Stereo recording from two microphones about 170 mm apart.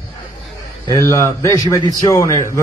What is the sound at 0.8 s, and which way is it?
Speech, 20° left (ahead or behind).